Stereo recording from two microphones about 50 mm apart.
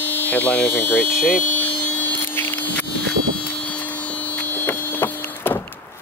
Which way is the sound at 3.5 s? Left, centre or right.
Left.